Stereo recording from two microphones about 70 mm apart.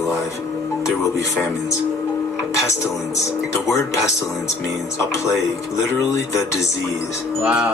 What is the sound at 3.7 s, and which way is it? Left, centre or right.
Speech, left.